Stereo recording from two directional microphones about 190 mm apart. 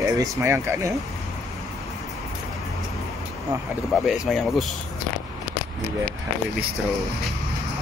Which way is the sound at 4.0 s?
Centre (ahead or behind).